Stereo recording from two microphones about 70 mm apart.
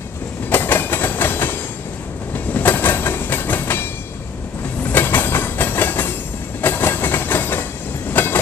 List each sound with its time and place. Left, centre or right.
0.5 s train: left
4.8 s train: left